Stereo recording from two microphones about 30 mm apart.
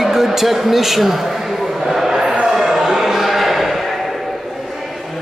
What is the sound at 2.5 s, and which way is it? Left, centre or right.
Music, centre.